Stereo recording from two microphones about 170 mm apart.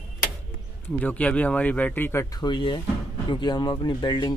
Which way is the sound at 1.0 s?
10° left (ahead or behind).